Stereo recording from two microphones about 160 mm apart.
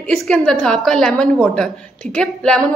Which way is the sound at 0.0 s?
5° left (ahead or behind).